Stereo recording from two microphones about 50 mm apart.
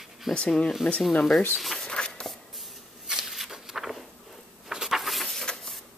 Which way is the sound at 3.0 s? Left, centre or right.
Centre.